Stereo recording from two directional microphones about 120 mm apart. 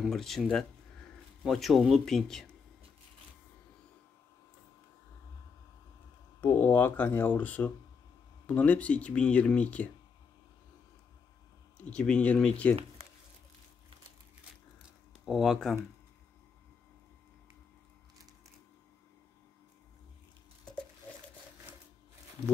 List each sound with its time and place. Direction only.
0.0 s speech: 5° left (ahead or behind)
6.4 s speech: 20° left (ahead or behind)
11.8 s speech: 10° left (ahead or behind)
15.2 s speech: centre (ahead or behind)